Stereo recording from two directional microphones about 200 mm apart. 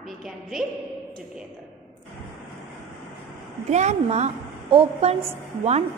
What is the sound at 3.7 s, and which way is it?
A woman's voice, 35° right (ahead or behind).